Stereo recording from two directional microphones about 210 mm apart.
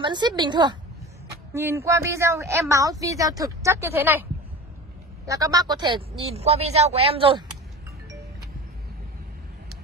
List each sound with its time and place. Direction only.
0.0 s speech: 20° right (ahead or behind)